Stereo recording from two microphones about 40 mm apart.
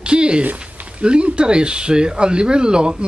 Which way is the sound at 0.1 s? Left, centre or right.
Right.